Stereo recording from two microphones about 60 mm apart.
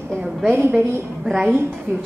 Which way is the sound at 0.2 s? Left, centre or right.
Centre.